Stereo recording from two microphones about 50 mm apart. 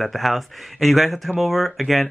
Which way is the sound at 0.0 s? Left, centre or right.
Centre.